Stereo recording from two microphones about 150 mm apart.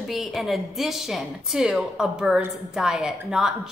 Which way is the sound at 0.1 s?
Centre (ahead or behind).